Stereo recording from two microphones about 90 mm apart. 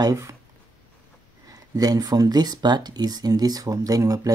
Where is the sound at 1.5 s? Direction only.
45° right (ahead or behind).